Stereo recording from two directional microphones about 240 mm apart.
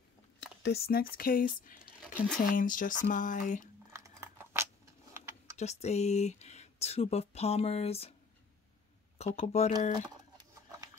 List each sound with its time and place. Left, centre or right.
0.4 s speech: left
3.9 s a sound: centre
5.1 s typing: centre
5.6 s speech: left
9.2 s speech: left